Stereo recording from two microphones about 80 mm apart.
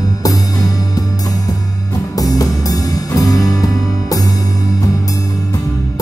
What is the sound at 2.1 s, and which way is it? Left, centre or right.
Music, left.